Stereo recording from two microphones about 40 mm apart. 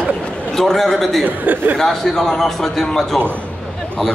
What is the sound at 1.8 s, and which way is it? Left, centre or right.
A man's voice, centre.